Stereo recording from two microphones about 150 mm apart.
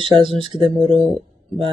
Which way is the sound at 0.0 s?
35° right (ahead or behind).